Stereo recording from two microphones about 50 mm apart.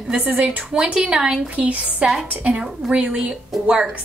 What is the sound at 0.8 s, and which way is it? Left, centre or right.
A woman's voice, centre.